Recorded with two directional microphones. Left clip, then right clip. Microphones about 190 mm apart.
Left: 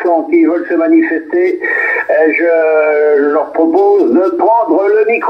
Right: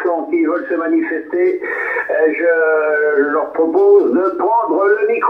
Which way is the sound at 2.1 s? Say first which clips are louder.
Left 4 dB; 35° left (ahead or behind).